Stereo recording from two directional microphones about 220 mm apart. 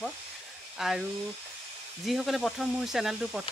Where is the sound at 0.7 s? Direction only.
Centre (ahead or behind).